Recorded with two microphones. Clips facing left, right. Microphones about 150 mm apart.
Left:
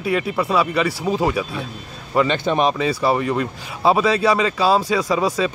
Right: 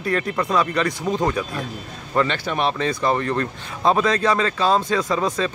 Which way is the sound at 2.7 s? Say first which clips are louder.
Left 2 dB; 5° left (ahead or behind).